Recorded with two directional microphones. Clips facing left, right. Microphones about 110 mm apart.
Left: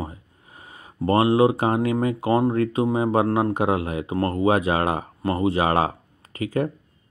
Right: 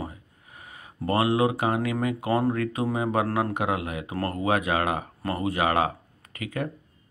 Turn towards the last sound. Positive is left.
turn(degrees=30)  # may be behind; listen again after turning